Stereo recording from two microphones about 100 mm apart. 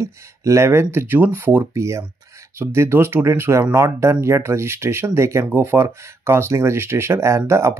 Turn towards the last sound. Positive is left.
turn(degrees=-25)  # may be behind; listen again after turning